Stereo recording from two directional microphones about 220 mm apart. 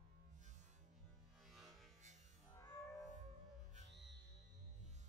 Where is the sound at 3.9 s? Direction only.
50° right (ahead or behind).